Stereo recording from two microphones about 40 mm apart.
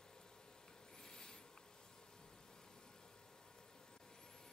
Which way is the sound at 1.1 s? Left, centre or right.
Centre.